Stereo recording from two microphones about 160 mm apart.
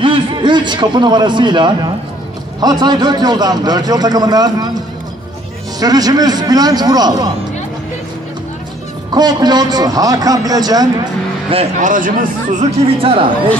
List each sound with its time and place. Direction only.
0.0 s a man's voice: 30° right (ahead or behind)
9.1 s a man's voice: 25° right (ahead or behind)
11.8 s speech: 55° right (ahead or behind); by 13.3 s 35° right (ahead or behind)